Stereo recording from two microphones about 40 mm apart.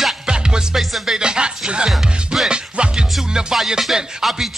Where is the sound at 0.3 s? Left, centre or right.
Centre.